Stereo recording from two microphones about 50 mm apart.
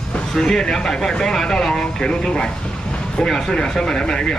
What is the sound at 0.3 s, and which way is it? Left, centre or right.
Speech, centre.